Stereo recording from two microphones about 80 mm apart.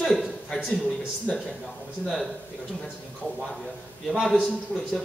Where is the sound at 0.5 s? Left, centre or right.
Centre.